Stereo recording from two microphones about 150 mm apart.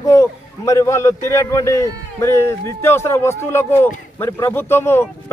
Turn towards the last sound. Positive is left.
turn(degrees=15)  # may be behind; listen again after turning